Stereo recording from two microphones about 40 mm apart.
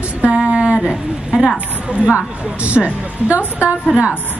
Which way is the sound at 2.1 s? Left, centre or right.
Right.